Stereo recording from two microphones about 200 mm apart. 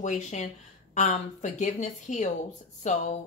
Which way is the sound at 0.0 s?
35° left (ahead or behind).